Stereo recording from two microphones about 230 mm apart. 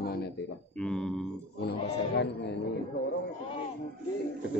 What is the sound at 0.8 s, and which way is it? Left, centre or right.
Speech, centre.